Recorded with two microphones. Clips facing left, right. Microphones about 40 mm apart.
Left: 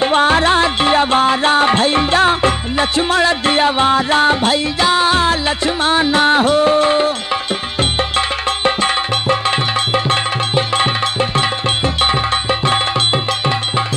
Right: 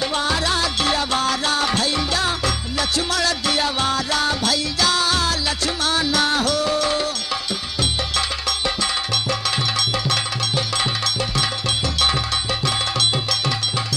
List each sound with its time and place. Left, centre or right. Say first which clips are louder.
0.0 s music: left 9 dB; left
8.2 s music: left 7 dB; left